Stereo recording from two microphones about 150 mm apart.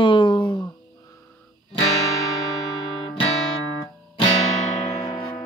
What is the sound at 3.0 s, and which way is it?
Music, 35° left (ahead or behind).